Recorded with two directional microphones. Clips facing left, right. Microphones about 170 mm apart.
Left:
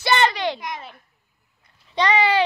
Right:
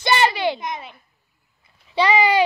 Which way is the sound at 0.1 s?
5° right (ahead or behind).